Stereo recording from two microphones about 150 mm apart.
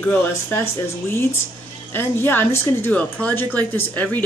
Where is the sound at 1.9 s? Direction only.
15° left (ahead or behind).